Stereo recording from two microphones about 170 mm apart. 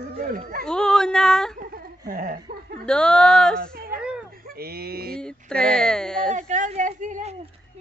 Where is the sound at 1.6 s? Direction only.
55° right (ahead or behind).